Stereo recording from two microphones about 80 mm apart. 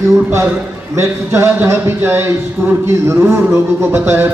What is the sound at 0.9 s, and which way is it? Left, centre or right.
A man's voice, right.